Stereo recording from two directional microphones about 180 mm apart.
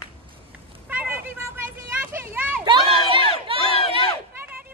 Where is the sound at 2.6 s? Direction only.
30° right (ahead or behind).